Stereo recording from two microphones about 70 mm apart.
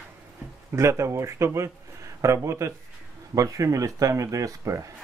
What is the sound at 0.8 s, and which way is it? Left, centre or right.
Speech, right.